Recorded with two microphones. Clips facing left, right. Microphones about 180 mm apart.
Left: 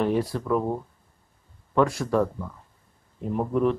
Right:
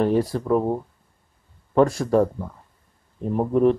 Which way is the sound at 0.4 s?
25° right (ahead or behind).